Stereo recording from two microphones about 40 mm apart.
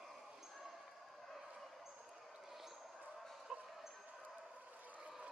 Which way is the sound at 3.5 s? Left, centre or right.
Centre.